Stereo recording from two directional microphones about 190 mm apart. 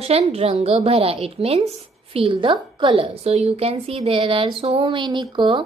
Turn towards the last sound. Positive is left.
turn(degrees=-25)  # may be behind; listen again after turning